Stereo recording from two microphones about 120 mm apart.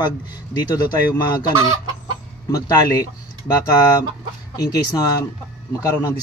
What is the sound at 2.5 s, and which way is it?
Speech, 30° left (ahead or behind).